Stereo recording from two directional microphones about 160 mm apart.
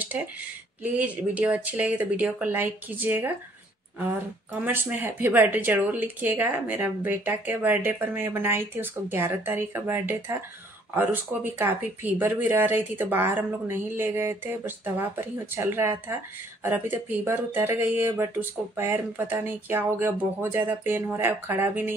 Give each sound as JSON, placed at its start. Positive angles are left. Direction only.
{"t": 0.9, "sound": "speech", "side_deg": -10}